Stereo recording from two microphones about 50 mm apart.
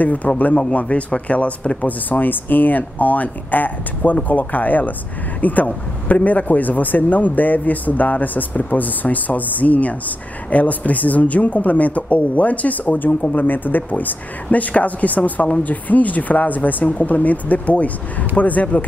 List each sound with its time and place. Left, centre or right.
0.0 s speech: left
1.9 s speech: left